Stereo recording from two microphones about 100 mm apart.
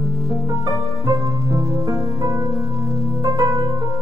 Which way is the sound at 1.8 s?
30° right (ahead or behind).